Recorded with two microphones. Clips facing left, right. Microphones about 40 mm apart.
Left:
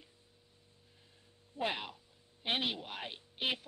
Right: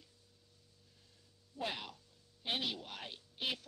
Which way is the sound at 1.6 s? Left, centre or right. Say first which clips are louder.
Left 5 dB; left.